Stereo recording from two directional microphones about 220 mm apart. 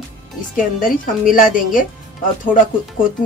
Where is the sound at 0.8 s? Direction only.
40° left (ahead or behind).